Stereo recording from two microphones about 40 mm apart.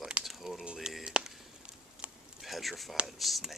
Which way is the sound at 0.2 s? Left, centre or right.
Centre.